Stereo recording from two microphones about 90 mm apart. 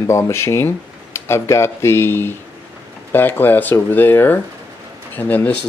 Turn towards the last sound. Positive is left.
turn(degrees=20)  # may be behind; listen again after turning